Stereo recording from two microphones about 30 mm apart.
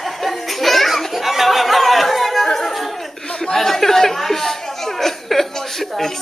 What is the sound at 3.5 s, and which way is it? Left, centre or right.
Chuckle, centre.